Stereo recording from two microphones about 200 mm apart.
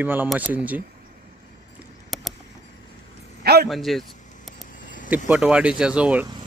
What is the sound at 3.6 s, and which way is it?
Speech, centre (ahead or behind).